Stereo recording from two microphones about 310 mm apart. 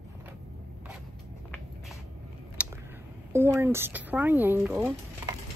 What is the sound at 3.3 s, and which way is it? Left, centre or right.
Speech, centre.